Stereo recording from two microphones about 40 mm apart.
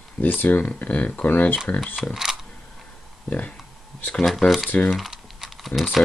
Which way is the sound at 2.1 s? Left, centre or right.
Centre.